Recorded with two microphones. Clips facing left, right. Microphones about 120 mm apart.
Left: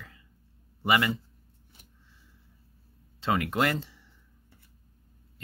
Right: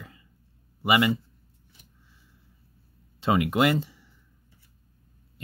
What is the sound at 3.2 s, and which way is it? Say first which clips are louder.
Speech: right 4 dB; 15° right (ahead or behind).